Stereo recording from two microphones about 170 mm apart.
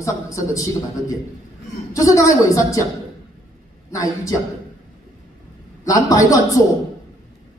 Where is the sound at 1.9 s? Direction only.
20° left (ahead or behind).